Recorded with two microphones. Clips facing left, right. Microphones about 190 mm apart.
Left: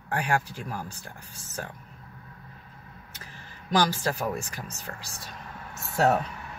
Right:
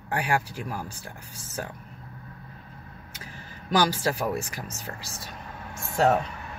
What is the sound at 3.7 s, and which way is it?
Speech, 10° right (ahead or behind).